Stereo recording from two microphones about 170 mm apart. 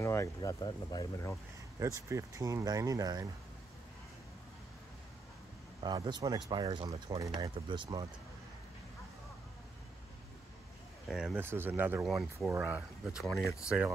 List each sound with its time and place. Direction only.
0.0 s speech: 15° left (ahead or behind)
1.8 s speech: 20° right (ahead or behind)
5.8 s speech: 25° right (ahead or behind)
11.1 s speech: centre (ahead or behind)
11.3 s speech: 15° right (ahead or behind)
12.1 s speech: centre (ahead or behind)